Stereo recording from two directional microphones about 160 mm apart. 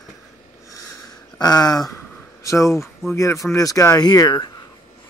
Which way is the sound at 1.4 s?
25° left (ahead or behind).